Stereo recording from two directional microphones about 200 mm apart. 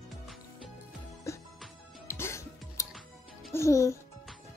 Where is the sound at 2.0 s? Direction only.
15° left (ahead or behind).